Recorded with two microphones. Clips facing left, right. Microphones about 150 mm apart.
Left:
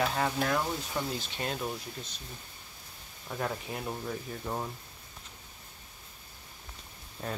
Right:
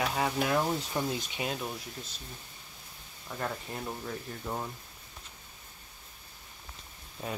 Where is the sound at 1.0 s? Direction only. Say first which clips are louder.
Right 1 dB; 20° right (ahead or behind).